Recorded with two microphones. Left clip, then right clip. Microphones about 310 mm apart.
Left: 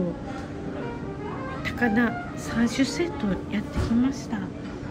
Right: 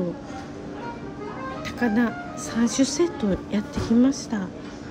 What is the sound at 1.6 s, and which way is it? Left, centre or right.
Speech, centre.